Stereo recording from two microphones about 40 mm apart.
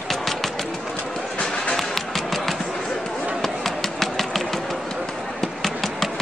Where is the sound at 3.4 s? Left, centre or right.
Centre.